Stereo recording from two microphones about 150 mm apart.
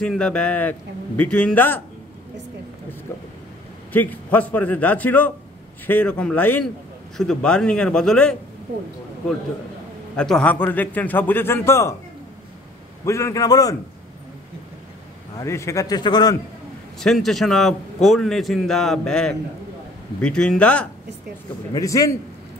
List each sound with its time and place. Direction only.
0.0 s a man's voice: 5° left (ahead or behind)
3.9 s a man's voice: 10° left (ahead or behind)
10.1 s a man's voice: 5° left (ahead or behind)
13.0 s a man's voice: 20° left (ahead or behind)
15.3 s a man's voice: 20° left (ahead or behind)
17.0 s a man's voice: centre (ahead or behind)
21.7 s a man's voice: 20° left (ahead or behind)